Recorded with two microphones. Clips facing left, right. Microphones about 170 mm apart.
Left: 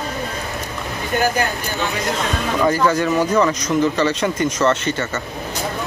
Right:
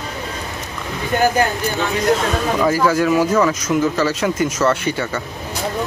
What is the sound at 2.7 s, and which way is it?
Speech, 5° right (ahead or behind).